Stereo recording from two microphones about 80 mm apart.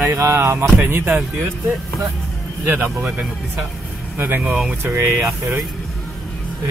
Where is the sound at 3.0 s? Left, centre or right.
Centre.